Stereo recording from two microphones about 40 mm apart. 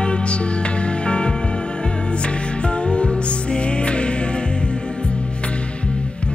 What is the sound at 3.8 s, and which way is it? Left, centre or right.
Music, left.